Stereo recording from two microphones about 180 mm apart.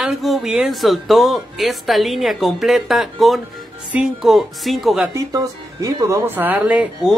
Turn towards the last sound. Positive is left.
turn(degrees=-5)  # may be behind; listen again after turning